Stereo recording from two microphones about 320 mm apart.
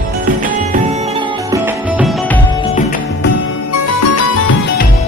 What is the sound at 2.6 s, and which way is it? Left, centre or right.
Music, left.